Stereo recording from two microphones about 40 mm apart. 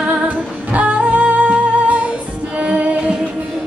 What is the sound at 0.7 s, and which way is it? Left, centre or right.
Music, right.